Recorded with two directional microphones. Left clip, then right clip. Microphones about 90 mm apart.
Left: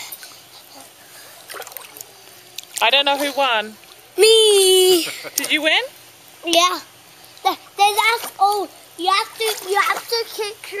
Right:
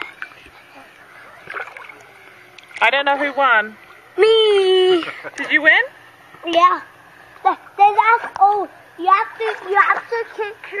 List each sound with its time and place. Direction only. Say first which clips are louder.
1.5 s rowboat: right 5 dB; 15° left (ahead or behind)
2.7 s a child's voice: even; 30° left (ahead or behind)
4.1 s a sound: left 1 dB; 20° left (ahead or behind)
6.5 s a child's voice: right 3 dB; 25° left (ahead or behind)